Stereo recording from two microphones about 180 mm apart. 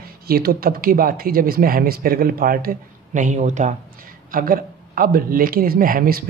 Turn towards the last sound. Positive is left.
turn(degrees=-55)  # may be behind; listen again after turning